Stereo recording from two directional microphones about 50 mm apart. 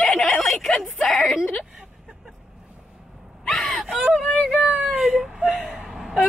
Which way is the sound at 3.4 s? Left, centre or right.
Centre.